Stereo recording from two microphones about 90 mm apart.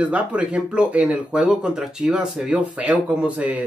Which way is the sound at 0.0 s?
15° right (ahead or behind).